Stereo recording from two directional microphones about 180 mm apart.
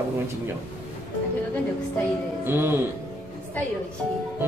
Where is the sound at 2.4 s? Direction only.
10° right (ahead or behind).